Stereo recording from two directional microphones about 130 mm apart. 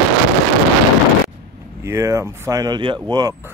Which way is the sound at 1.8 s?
20° right (ahead or behind).